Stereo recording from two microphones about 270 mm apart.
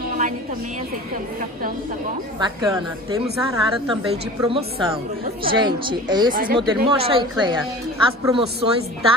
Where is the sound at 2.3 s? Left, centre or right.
Centre.